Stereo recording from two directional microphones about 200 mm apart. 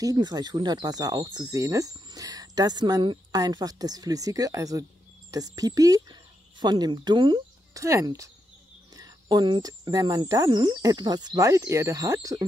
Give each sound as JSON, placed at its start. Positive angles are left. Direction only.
{"t": 0.0, "sound": "speech", "side_deg": -20}